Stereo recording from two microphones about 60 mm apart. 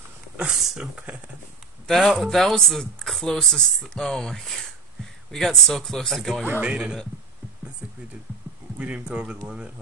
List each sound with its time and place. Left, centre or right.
0.6 s speech: centre
1.9 s speech: centre
6.6 s speech: centre
8.7 s speech: right